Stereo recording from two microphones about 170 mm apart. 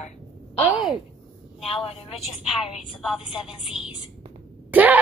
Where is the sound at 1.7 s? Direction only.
35° left (ahead or behind).